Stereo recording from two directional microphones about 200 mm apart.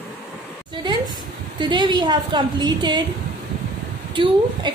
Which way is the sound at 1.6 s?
20° right (ahead or behind).